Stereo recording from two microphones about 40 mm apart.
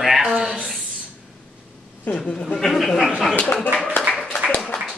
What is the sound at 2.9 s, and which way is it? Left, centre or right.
Speech, centre.